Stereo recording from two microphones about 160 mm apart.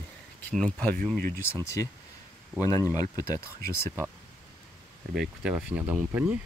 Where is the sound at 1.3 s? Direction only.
15° left (ahead or behind).